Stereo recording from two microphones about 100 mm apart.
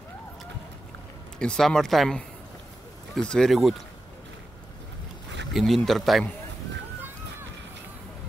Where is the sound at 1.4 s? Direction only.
10° left (ahead or behind).